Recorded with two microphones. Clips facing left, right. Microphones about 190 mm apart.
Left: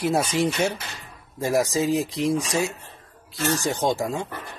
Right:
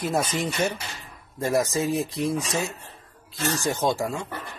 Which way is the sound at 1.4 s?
15° left (ahead or behind).